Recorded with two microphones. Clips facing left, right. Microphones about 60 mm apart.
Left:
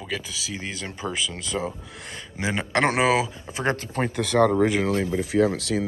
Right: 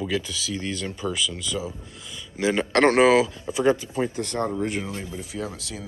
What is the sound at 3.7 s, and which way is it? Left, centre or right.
Speech, left.